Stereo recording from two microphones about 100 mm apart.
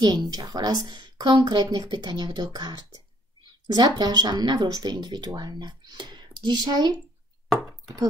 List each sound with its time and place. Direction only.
0.0 s speech: 40° right (ahead or behind)